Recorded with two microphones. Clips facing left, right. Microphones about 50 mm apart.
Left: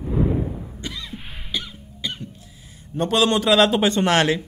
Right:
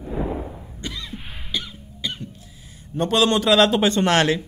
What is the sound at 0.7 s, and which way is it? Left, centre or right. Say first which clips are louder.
Cough: even; centre.